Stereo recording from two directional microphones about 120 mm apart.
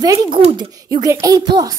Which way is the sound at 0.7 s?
30° right (ahead or behind).